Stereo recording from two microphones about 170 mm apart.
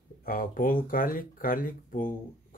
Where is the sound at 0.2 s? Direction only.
55° left (ahead or behind).